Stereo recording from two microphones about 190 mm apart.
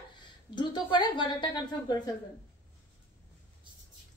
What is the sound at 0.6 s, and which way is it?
A woman's voice, 25° left (ahead or behind).